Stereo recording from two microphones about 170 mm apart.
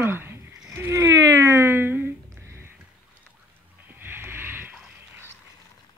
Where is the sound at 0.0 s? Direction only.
15° right (ahead or behind).